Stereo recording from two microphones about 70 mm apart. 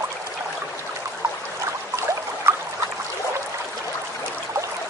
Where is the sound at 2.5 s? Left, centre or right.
Right.